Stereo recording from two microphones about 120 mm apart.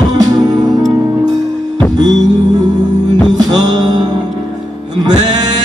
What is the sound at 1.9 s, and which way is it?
Music, 35° right (ahead or behind).